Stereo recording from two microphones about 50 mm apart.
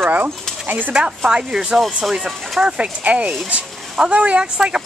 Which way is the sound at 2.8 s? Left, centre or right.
Right.